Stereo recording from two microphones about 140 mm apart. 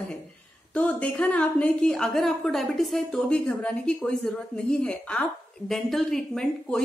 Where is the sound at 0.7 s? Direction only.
10° left (ahead or behind).